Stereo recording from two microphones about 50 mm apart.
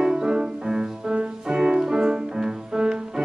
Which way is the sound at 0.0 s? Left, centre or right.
Centre.